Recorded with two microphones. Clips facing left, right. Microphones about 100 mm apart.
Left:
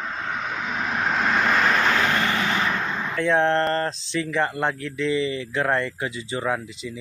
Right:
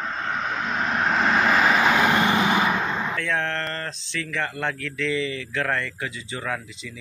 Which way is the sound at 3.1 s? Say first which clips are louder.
Left 6 dB; 20° left (ahead or behind).